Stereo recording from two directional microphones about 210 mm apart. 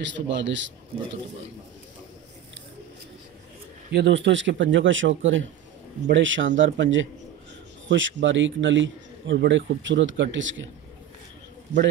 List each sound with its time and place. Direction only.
0.0 s a man's voice: 60° right (ahead or behind)
3.9 s a man's voice: 55° right (ahead or behind)